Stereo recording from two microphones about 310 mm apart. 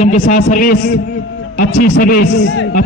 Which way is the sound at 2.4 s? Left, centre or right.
Left.